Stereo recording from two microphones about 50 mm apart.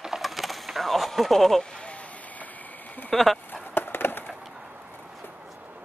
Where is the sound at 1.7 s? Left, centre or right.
Left.